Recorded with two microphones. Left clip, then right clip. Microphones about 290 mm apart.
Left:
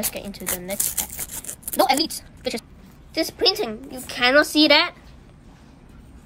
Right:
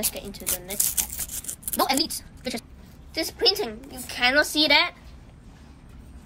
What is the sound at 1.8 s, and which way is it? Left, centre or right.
A woman's voice, left.